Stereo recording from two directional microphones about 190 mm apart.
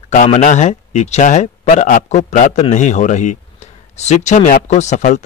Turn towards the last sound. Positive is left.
turn(degrees=40)  # may be behind; listen again after turning